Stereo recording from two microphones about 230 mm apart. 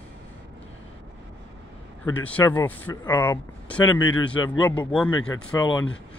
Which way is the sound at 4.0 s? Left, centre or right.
Left.